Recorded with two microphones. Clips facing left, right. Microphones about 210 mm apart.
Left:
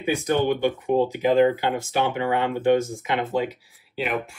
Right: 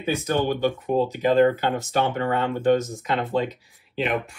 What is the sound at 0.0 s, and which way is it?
Speech, 15° left (ahead or behind).